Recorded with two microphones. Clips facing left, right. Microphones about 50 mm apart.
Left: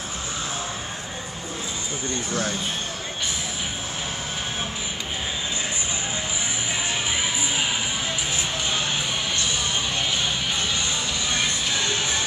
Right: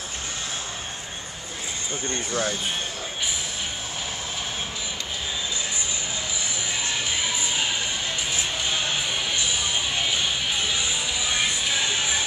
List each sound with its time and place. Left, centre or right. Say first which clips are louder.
2.0 s speech: even; right
9.4 s music: even; centre